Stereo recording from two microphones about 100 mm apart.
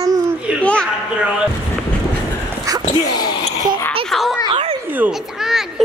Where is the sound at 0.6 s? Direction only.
10° left (ahead or behind).